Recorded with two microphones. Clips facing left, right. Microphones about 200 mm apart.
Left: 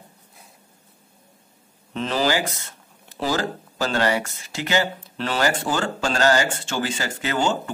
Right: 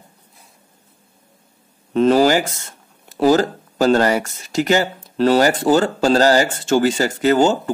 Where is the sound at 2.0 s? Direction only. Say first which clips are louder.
Right 9 dB; 45° right (ahead or behind).